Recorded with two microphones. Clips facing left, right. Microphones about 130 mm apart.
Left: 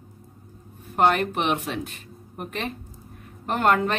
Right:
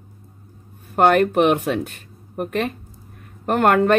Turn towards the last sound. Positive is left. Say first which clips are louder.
# right 6 dB
turn(degrees=-55)  # may be behind; listen again after turning